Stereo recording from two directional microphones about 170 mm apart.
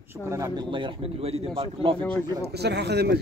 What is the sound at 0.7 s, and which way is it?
Speech, 30° right (ahead or behind).